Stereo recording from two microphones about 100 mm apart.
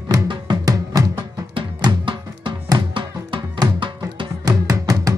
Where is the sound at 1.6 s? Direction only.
55° right (ahead or behind).